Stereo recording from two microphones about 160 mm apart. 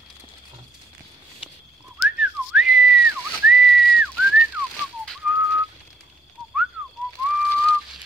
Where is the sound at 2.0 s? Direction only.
5° right (ahead or behind).